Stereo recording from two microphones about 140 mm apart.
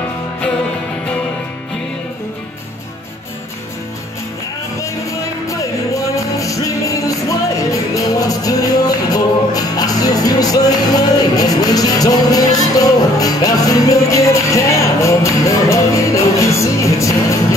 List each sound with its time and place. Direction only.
6.4 s music: 25° left (ahead or behind)